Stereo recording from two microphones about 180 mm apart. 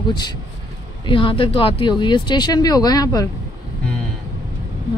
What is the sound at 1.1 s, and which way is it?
Speech, 30° left (ahead or behind).